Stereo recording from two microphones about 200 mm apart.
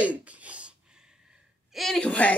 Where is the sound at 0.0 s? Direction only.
5° right (ahead or behind).